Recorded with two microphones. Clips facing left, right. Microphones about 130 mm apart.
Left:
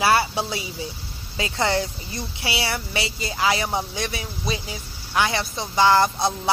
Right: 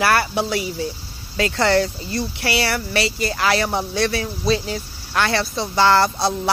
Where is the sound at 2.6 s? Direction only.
20° left (ahead or behind).